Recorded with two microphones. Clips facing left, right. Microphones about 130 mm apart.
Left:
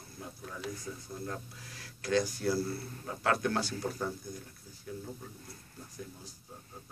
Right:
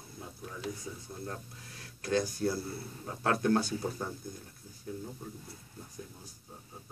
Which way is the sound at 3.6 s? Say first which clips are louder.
Even; 15° right (ahead or behind).